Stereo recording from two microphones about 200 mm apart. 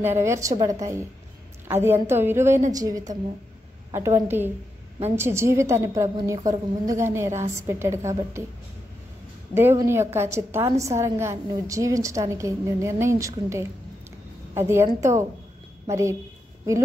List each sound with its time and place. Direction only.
0.0 s a woman's voice: 10° right (ahead or behind)
9.6 s a woman's voice: 10° right (ahead or behind)